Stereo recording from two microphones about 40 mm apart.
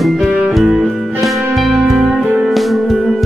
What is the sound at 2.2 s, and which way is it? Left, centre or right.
Music, right.